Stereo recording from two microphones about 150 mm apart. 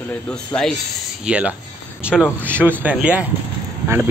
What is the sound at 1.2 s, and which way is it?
Speech, 10° right (ahead or behind).